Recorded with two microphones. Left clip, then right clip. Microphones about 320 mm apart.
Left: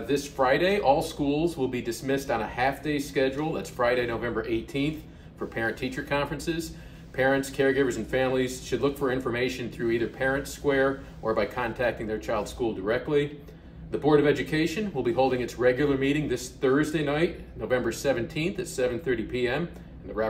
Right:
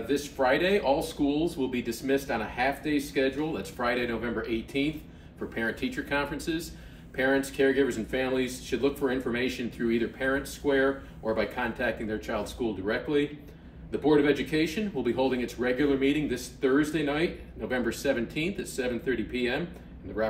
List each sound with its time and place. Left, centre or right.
0.1 s speech: centre